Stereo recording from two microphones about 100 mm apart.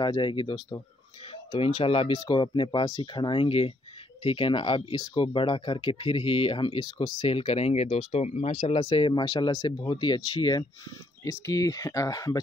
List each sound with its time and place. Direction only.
0.0 s speech: 50° left (ahead or behind)
1.3 s speech: 65° left (ahead or behind)
7.2 s speech: 70° left (ahead or behind); by 9.2 s 55° left (ahead or behind)
9.2 s speech: 45° left (ahead or behind)
11.2 s speech: 35° left (ahead or behind)